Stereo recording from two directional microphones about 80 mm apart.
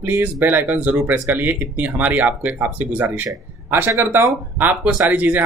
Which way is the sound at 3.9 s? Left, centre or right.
Right.